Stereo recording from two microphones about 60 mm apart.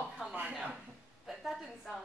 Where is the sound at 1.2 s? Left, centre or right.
Centre.